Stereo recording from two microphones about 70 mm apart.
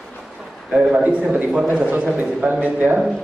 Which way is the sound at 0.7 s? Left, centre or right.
Centre.